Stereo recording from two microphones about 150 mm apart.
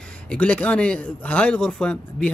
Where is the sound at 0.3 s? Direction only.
10° left (ahead or behind).